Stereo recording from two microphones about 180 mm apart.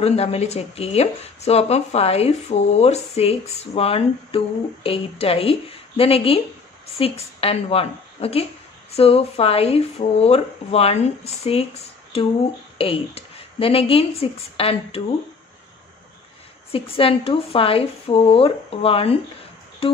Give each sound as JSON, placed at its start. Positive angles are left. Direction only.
{"t": 0.0, "sound": "speech", "side_deg": 35}
{"t": 16.7, "sound": "speech", "side_deg": 30}
{"t": 19.8, "sound": "music", "side_deg": 30}